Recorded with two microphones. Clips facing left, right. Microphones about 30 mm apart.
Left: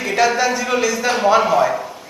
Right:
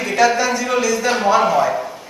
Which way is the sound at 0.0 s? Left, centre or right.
Centre.